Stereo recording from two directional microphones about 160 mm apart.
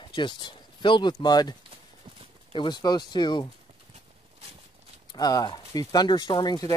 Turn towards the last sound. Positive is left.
turn(degrees=25)  # may be behind; listen again after turning